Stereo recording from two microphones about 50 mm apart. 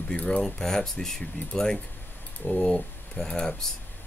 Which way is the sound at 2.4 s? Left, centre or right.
Centre.